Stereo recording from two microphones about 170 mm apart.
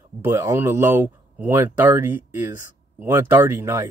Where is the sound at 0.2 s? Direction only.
15° right (ahead or behind).